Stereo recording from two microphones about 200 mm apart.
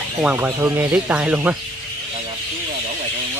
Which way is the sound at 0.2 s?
10° right (ahead or behind).